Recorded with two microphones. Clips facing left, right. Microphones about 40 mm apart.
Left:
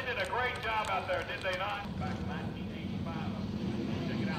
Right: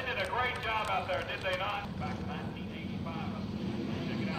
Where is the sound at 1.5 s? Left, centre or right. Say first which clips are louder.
Right 1 dB; centre.